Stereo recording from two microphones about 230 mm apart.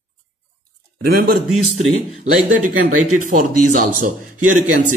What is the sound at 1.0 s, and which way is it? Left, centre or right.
A man's voice, right.